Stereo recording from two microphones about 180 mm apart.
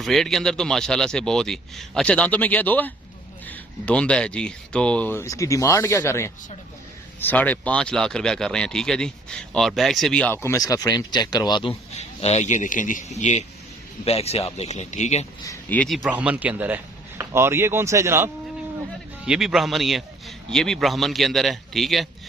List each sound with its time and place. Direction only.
0.0 s speech: centre (ahead or behind); by 11.7 s 25° left (ahead or behind)
11.9 s a man's voice: 35° left (ahead or behind)
15.4 s a man's voice: 10° left (ahead or behind); by 18.3 s 15° right (ahead or behind)
19.2 s speech: 5° right (ahead or behind)